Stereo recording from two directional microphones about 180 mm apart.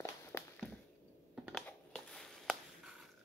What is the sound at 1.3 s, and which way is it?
Typing, 5° right (ahead or behind).